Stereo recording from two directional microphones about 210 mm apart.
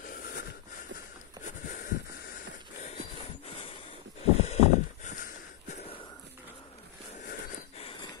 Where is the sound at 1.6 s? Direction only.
40° left (ahead or behind).